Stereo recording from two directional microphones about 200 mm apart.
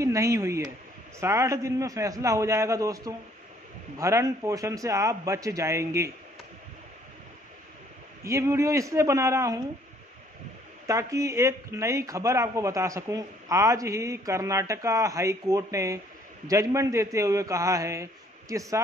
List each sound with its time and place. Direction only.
0.0 s a man's voice: 15° right (ahead or behind)
8.2 s a man's voice: 15° right (ahead or behind)
10.9 s a man's voice: 15° right (ahead or behind)